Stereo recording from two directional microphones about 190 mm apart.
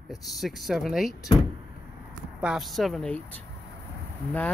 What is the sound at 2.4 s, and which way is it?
Speech, centre (ahead or behind).